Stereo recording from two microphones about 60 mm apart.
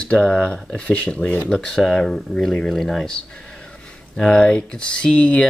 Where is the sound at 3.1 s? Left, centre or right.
Centre.